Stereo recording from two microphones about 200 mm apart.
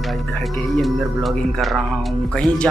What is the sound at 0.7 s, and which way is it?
Speech, centre (ahead or behind).